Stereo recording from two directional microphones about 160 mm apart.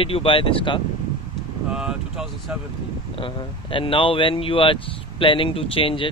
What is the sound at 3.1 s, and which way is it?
Speech, 30° left (ahead or behind).